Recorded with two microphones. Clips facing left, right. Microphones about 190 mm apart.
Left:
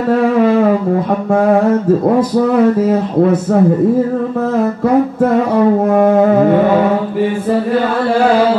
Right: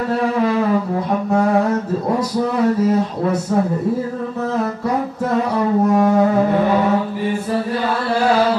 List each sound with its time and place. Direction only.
2.1 s music: 50° left (ahead or behind)